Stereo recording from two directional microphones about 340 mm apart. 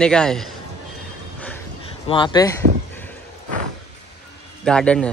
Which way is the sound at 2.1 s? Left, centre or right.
Centre.